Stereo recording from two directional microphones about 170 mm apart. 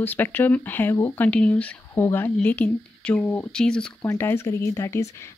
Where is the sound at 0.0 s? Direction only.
10° left (ahead or behind).